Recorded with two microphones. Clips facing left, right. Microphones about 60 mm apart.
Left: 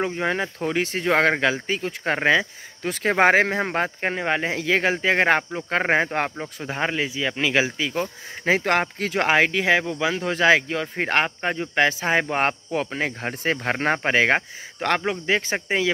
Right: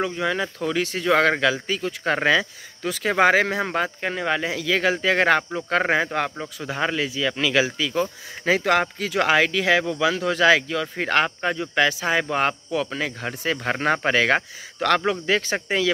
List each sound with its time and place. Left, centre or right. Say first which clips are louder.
0.0 s speech: even; left